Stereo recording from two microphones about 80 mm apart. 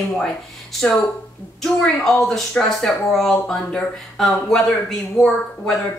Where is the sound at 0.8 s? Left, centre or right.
Centre.